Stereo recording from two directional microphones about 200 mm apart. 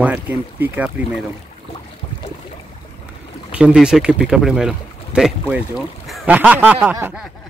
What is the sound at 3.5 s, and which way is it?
Speech, 5° right (ahead or behind).